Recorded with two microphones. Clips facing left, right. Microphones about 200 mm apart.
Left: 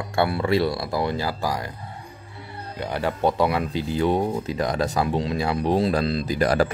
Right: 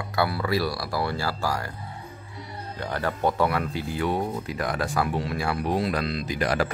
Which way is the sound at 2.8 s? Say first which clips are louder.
Left 3 dB; 15° left (ahead or behind).